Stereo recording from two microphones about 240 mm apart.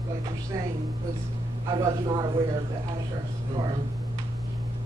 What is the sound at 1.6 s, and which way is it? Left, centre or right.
Speech, centre.